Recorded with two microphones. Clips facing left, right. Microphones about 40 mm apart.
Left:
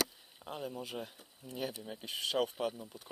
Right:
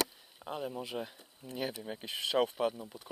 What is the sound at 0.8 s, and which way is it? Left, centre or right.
Speech, right.